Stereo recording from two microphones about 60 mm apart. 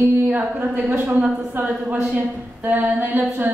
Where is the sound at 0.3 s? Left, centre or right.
Right.